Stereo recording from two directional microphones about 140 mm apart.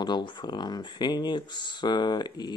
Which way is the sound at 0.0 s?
30° left (ahead or behind).